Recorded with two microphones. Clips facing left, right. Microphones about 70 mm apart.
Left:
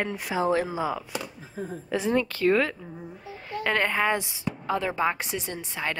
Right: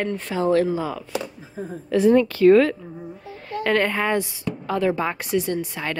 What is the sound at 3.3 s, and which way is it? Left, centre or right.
A woman's voice, centre.